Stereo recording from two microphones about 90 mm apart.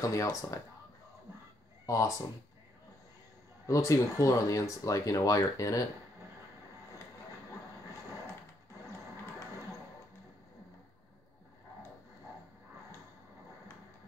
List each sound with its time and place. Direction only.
0.0 s speech: 35° left (ahead or behind)
1.9 s speech: 35° left (ahead or behind)
3.6 s speech: 35° left (ahead or behind)